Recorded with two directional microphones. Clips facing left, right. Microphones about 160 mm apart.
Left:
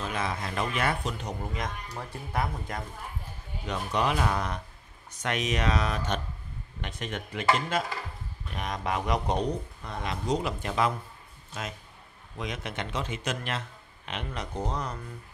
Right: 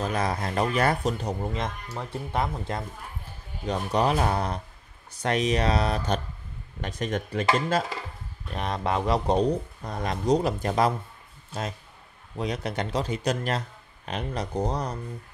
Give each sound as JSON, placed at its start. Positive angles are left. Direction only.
{"t": 0.0, "sound": "speech", "side_deg": -40}
{"t": 12.4, "sound": "speech", "side_deg": -35}